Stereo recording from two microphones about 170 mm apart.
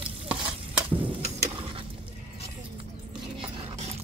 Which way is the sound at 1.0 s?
30° right (ahead or behind).